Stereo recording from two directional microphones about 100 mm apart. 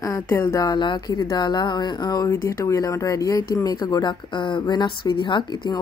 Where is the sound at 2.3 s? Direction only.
30° left (ahead or behind).